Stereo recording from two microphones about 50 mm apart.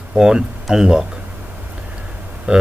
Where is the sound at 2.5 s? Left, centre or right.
Right.